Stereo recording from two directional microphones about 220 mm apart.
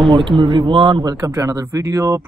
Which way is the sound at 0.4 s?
20° right (ahead or behind).